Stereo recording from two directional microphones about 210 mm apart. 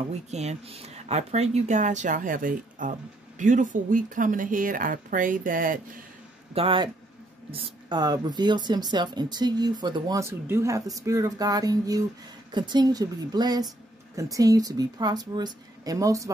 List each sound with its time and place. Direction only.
0.3 s speech: 30° right (ahead or behind)
6.5 s speech: 25° right (ahead or behind)